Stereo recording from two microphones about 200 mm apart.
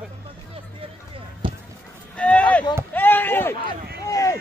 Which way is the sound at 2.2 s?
5° left (ahead or behind).